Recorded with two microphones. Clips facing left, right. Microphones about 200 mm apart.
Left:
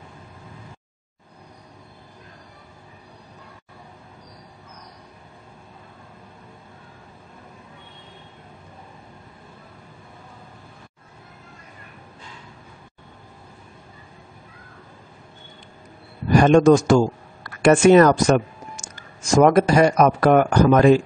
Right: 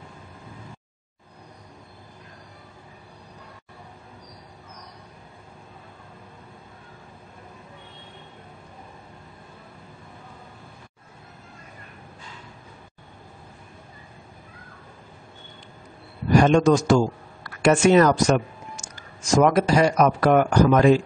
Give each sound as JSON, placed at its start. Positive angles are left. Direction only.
{"t": 16.3, "sound": "a man's voice", "side_deg": 50}